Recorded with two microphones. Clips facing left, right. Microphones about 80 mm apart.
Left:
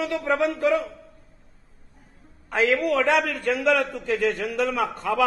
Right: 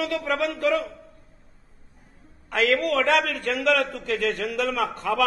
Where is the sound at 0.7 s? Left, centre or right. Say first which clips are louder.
Right 1 dB; centre.